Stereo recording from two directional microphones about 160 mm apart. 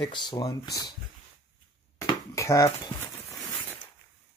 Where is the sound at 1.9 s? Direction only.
20° left (ahead or behind).